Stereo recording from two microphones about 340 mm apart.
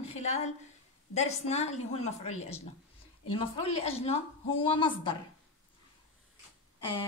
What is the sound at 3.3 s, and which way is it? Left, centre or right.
A woman's voice, centre.